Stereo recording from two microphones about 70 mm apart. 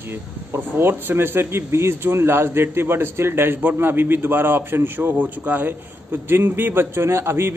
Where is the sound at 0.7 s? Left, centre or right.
Right.